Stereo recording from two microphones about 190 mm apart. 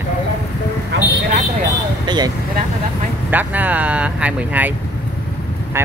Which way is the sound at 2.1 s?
20° right (ahead or behind).